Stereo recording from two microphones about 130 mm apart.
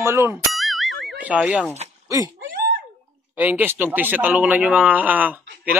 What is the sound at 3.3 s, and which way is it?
Speech, 10° right (ahead or behind).